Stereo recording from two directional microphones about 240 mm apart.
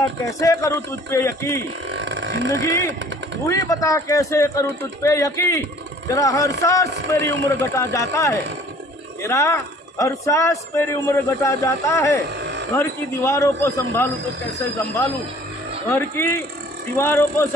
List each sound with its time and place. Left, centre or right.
0.2 s a man's voice: centre
2.0 s speech: right
2.6 s a man's voice: centre
15.9 s a man's voice: centre